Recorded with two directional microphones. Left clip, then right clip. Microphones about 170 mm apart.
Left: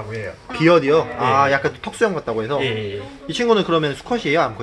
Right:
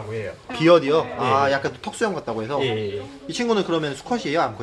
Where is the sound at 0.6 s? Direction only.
10° left (ahead or behind).